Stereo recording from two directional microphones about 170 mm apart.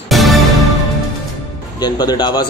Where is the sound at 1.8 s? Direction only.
25° left (ahead or behind).